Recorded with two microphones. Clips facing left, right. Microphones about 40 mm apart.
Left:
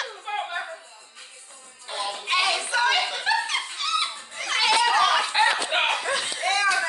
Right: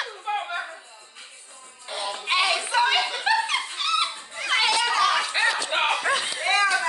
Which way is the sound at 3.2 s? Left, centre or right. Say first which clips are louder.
Right 2 dB; right.